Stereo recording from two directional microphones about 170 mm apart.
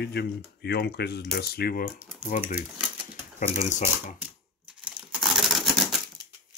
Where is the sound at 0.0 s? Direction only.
75° left (ahead or behind).